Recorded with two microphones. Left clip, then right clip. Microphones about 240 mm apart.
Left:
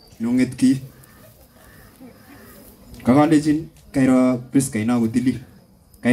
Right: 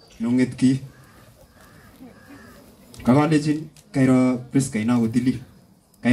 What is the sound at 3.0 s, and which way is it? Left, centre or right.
A man's voice, left.